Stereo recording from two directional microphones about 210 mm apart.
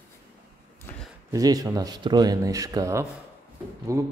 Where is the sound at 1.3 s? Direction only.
15° right (ahead or behind).